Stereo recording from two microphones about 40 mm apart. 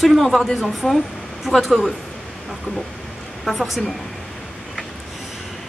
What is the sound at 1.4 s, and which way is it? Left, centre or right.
Speech, centre.